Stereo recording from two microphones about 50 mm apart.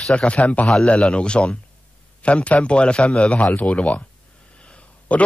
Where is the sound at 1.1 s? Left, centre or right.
Left.